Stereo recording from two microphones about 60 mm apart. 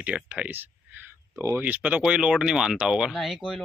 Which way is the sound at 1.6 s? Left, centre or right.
Right.